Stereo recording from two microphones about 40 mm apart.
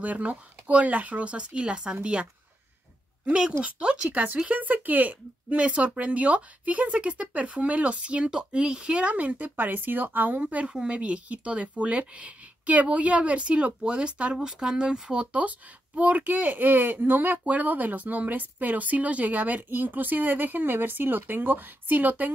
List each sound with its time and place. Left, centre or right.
0.0 s speech: right
3.6 s speech: right
4.1 s speech: right
8.3 s speech: right
10.7 s speech: right
15.3 s speech: right
17.5 s speech: right